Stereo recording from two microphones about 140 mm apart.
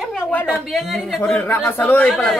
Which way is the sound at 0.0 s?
5° left (ahead or behind).